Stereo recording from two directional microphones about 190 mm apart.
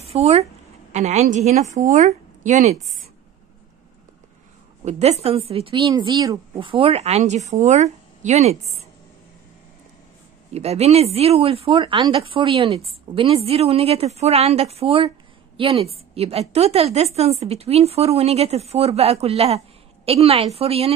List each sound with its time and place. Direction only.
0.1 s speech: 35° right (ahead or behind)
4.8 s speech: 35° right (ahead or behind)
10.5 s speech: 35° right (ahead or behind)